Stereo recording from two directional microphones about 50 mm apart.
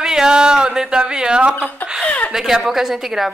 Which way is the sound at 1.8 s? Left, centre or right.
Left.